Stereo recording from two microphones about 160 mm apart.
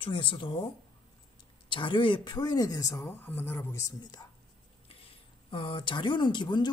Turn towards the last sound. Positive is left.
turn(degrees=30)  # may be behind; listen again after turning